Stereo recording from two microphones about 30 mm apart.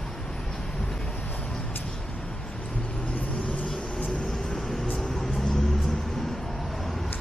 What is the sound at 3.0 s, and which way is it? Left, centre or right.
Vehicle, left.